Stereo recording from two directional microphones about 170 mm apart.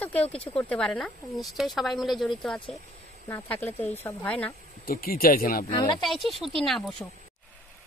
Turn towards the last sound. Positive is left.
turn(degrees=5)  # may be behind; listen again after turning